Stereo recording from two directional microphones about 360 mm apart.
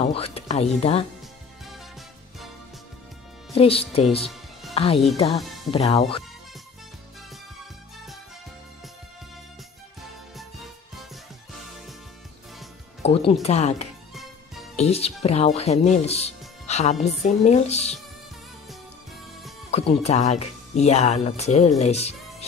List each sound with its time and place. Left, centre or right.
0.0 s speech: centre
3.5 s speech: centre
4.2 s music: centre
4.7 s speech: centre
5.4 s music: centre
5.7 s speech: centre
13.0 s speech: centre
19.7 s speech: centre